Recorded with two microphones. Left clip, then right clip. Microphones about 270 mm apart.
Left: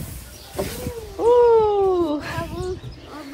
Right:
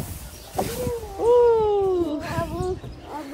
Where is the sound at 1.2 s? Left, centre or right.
Left.